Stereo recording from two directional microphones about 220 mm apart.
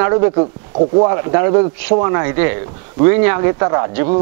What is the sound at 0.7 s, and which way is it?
Speech, 30° right (ahead or behind).